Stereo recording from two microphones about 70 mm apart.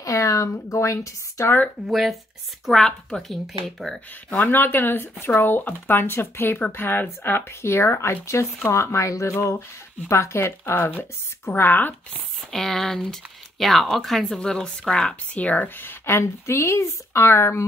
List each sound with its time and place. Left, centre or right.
0.0 s speech: left
1.9 s speech: centre
4.4 s speech: left
12.4 s speech: centre; by 17.6 s left